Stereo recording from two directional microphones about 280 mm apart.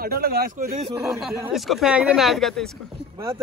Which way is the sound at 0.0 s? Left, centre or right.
Right.